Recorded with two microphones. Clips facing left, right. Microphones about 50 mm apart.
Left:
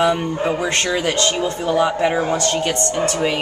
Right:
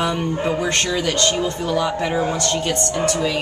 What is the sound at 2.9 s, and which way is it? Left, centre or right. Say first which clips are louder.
Speech: even; left.